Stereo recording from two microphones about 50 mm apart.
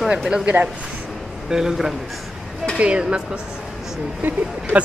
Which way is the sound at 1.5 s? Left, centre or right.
Centre.